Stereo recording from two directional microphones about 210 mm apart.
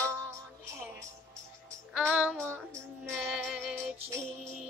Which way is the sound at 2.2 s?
10° right (ahead or behind).